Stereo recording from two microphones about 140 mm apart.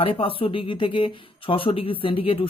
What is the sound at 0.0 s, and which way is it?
Speech, 40° left (ahead or behind).